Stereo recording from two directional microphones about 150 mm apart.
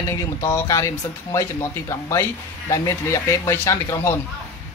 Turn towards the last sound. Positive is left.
turn(degrees=20)  # may be behind; listen again after turning